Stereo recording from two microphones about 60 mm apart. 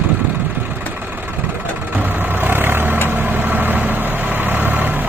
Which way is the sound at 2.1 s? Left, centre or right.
Right.